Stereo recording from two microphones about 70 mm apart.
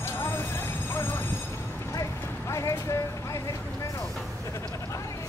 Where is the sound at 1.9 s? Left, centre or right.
Left.